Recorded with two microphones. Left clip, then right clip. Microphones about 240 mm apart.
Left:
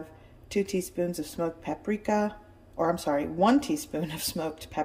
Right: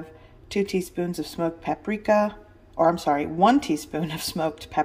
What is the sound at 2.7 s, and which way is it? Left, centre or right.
Speech, centre.